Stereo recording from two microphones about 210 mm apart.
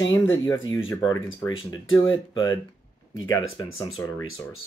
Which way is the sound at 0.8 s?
15° left (ahead or behind).